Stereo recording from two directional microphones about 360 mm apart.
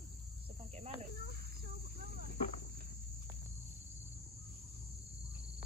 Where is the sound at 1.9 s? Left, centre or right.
Right.